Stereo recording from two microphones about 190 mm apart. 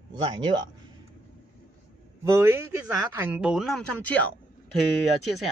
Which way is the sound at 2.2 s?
15° right (ahead or behind).